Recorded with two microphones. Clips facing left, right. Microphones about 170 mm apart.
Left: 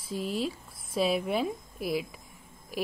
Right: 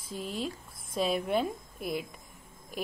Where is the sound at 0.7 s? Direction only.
45° right (ahead or behind).